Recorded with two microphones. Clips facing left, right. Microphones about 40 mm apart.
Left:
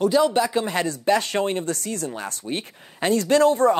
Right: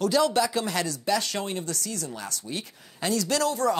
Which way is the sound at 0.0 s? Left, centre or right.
Centre.